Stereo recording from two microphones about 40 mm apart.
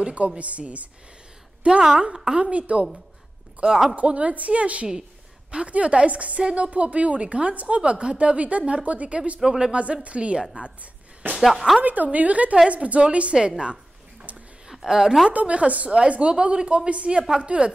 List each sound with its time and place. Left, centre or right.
0.0 s a woman's voice: right
1.6 s a woman's voice: right
3.9 s a woman's voice: right
9.4 s a woman's voice: centre; by 11.3 s right
11.3 s speech: centre
11.8 s a woman's voice: right
13.4 s a woman's voice: centre
14.3 s a sound: right
14.7 s a woman's voice: centre
15.3 s a woman's voice: right